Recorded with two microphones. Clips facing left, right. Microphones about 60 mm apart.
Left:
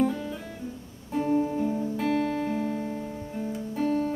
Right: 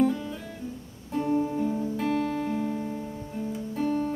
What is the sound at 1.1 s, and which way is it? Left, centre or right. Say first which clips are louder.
Music: left 1 dB; centre.